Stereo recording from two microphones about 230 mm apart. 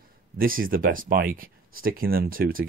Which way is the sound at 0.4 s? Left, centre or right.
Right.